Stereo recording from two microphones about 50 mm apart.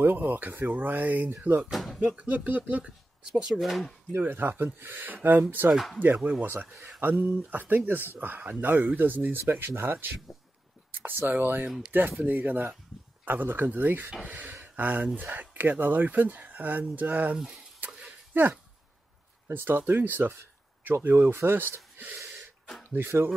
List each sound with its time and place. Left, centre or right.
0.0 s speech: right
1.6 s speech: centre
2.0 s speech: right
3.4 s speech: centre
4.1 s speech: right
14.5 s a sound: right
15.3 s speech: right
17.8 s a sound: right
18.3 s speech: right
21.9 s gasp: right
22.8 s speech: right